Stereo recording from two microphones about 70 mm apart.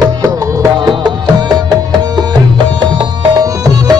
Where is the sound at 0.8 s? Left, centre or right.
Right.